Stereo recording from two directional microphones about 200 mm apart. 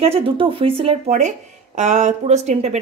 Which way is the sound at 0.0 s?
30° right (ahead or behind).